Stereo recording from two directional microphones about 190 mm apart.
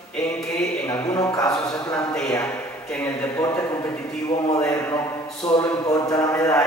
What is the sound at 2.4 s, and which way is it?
A man's voice, 5° left (ahead or behind).